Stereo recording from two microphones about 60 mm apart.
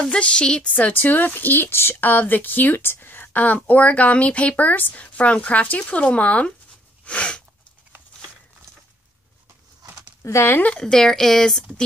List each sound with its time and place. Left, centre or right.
0.0 s speech: centre
0.7 s a woman's voice: left
7.1 s sneeze: centre
10.2 s speech: left
10.8 s speech: centre